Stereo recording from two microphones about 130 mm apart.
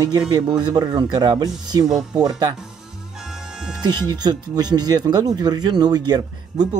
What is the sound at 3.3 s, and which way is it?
Music, 5° right (ahead or behind).